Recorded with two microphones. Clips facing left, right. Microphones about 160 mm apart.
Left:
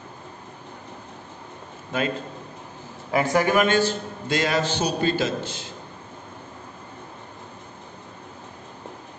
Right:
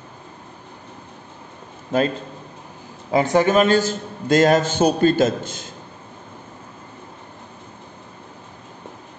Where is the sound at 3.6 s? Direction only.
40° right (ahead or behind).